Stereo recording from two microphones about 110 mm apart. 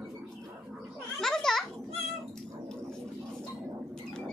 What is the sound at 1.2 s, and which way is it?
Children playing, 5° left (ahead or behind).